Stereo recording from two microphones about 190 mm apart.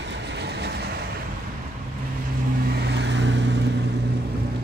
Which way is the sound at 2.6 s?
55° right (ahead or behind).